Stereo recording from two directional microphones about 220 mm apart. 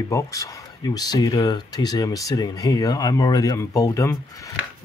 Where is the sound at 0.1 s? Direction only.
15° left (ahead or behind).